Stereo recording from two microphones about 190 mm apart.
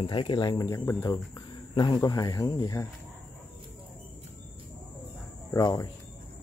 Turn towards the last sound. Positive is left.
turn(degrees=20)  # may be behind; listen again after turning